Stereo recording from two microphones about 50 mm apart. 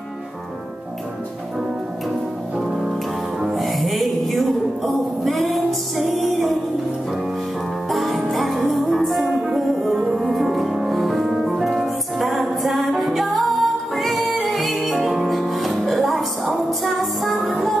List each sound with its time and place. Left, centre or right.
2.5 s music: centre
3.5 s music: centre
7.9 s music: centre